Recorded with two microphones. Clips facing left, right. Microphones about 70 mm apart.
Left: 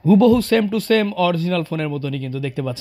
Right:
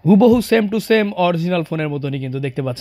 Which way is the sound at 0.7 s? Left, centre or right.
Centre.